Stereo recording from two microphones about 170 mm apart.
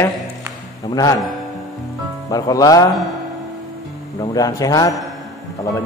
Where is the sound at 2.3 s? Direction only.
20° left (ahead or behind).